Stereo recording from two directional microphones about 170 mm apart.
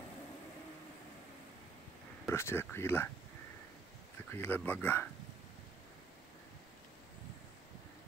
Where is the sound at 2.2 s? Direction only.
15° left (ahead or behind).